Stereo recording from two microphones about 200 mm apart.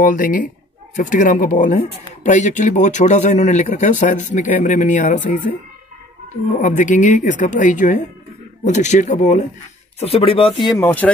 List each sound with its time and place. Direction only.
0.0 s speech: 40° left (ahead or behind); by 11.1 s 10° left (ahead or behind)